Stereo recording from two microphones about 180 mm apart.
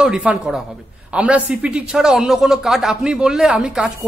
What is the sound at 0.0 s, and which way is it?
Speech, 5° right (ahead or behind).